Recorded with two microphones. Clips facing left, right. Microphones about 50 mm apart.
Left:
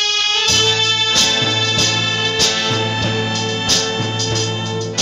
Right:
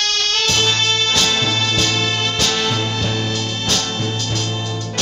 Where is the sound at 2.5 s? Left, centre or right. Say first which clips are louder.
Left 1 dB; centre.